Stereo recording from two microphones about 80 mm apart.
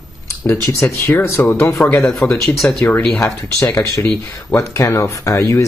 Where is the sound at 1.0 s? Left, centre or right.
Left.